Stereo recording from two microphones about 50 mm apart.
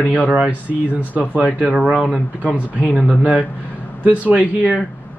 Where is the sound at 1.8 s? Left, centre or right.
Right.